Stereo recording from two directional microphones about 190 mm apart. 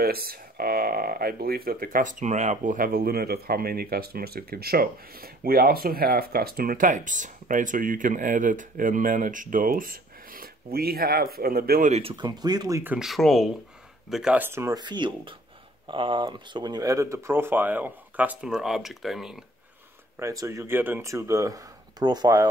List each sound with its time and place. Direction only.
0.0 s speech: 55° right (ahead or behind)
11.9 s speech: 30° right (ahead or behind); by 19.4 s centre (ahead or behind)
20.2 s speech: 15° right (ahead or behind)